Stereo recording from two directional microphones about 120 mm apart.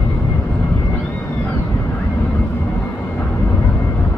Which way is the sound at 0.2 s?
20° left (ahead or behind).